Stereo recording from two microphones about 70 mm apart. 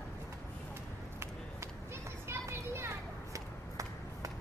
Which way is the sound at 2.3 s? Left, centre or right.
Right.